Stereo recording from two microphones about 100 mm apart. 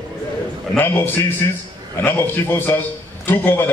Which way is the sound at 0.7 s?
20° left (ahead or behind).